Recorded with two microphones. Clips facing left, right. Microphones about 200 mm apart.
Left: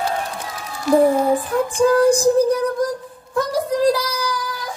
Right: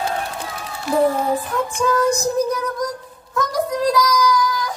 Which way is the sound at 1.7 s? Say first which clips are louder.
Left 5 dB; 30° left (ahead or behind).